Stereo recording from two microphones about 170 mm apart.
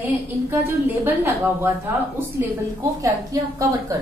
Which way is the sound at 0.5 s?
15° right (ahead or behind).